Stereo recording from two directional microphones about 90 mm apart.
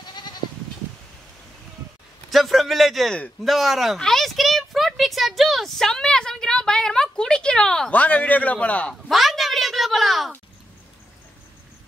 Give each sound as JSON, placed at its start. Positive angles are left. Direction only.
{"t": 0.0, "sound": "goat", "side_deg": 55}
{"t": 2.3, "sound": "a man's voice", "side_deg": 0}
{"t": 9.1, "sound": "a sound", "side_deg": 0}